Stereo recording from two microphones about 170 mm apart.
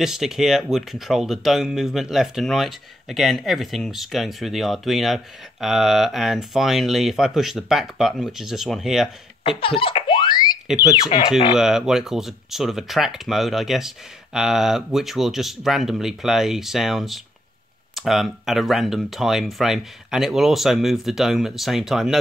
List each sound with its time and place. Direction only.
0.0 s speech: centre (ahead or behind)
9.4 s laughter: 30° left (ahead or behind)
10.7 s speech: 5° right (ahead or behind)